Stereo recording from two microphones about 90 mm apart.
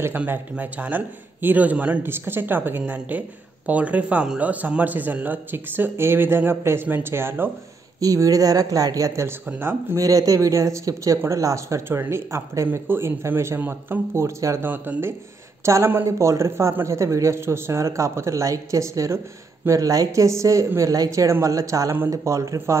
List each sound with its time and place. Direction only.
0.0 s a man's voice: 25° right (ahead or behind)
8.0 s speech: 40° right (ahead or behind)
9.5 s a man's voice: 25° right (ahead or behind)
9.9 s a man's voice: 40° right (ahead or behind)
14.7 s a man's voice: 25° right (ahead or behind)